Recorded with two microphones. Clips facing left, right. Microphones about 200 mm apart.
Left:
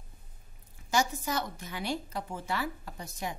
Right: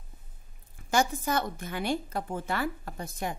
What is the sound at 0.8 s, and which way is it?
A woman's voice, 55° right (ahead or behind).